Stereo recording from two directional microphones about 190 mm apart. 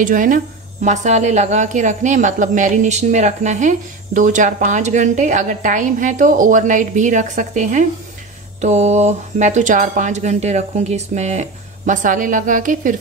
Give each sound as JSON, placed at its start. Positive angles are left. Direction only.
{"t": 0.0, "sound": "speech", "side_deg": -45}